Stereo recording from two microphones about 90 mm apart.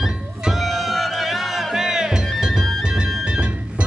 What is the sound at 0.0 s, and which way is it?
Music, centre (ahead or behind).